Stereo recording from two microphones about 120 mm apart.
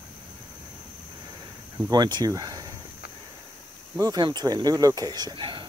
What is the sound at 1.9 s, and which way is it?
Speech, 35° right (ahead or behind).